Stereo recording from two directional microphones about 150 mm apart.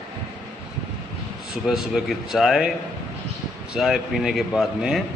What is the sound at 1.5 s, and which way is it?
A man's voice, 5° right (ahead or behind).